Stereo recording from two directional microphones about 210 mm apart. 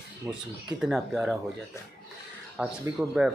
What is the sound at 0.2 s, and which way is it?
Speech, 15° right (ahead or behind).